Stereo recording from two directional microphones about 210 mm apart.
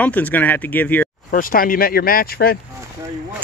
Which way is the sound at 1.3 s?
40° left (ahead or behind).